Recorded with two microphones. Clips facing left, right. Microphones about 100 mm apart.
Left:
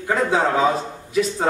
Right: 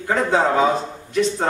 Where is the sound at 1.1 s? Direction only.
5° left (ahead or behind).